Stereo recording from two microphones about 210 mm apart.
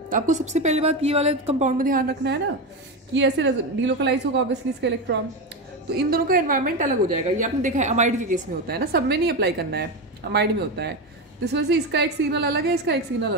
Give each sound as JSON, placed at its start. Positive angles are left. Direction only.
{"t": 0.1, "sound": "a woman's voice", "side_deg": -35}
{"t": 5.9, "sound": "a woman's voice", "side_deg": -45}